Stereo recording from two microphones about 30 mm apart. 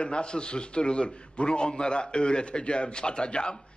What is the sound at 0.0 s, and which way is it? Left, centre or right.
A man's voice, left.